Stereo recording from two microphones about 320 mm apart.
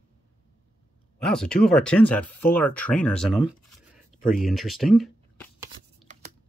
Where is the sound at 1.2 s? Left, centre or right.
Centre.